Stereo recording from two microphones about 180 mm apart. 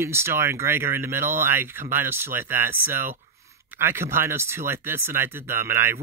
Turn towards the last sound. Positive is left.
turn(degrees=-15)  # may be behind; listen again after turning